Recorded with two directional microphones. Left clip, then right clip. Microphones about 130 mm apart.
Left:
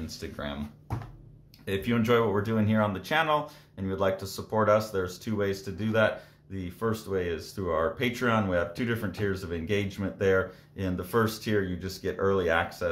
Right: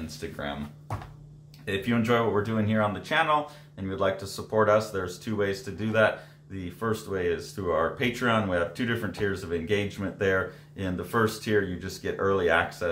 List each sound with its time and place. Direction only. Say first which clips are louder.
0.0 s speech: right 2 dB; 35° left (ahead or behind)
1.7 s speech: even; 35° left (ahead or behind)